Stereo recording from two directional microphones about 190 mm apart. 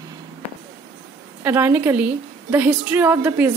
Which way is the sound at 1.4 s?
10° right (ahead or behind).